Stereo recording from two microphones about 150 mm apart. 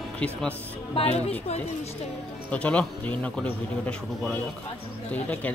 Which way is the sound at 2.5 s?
10° left (ahead or behind).